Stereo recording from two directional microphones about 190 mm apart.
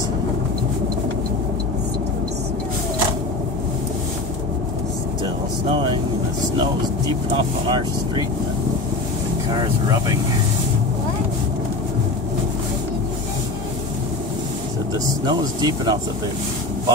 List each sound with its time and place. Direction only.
5.2 s vehicle: 25° right (ahead or behind)
6.6 s speech: 25° right (ahead or behind)
9.5 s speech: 20° right (ahead or behind)
15.2 s speech: 20° right (ahead or behind)